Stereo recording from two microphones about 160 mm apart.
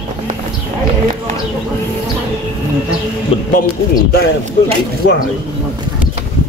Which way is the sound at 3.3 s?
35° left (ahead or behind).